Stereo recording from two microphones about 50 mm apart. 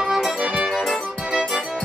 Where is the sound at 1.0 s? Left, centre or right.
Centre.